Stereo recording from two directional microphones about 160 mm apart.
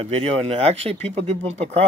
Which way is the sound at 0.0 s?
40° right (ahead or behind).